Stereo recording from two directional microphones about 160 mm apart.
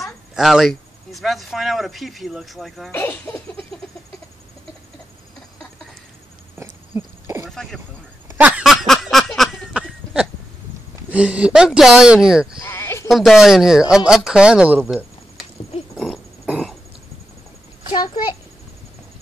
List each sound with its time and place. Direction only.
0.0 s speech: centre (ahead or behind)
2.9 s speech: 15° left (ahead or behind)
6.6 s owl: 20° right (ahead or behind)
7.4 s a sound: centre (ahead or behind)
11.1 s speech: 10° right (ahead or behind)
12.6 s bleat: 15° left (ahead or behind)
13.1 s speech: centre (ahead or behind)
16.4 s throat clearing: 5° right (ahead or behind)
17.9 s a sound: 25° left (ahead or behind)